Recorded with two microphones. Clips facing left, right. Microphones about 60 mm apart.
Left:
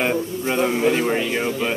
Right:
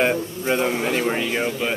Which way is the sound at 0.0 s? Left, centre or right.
Centre.